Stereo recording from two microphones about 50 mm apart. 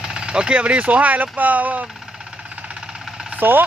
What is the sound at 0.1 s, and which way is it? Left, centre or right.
Speech, centre.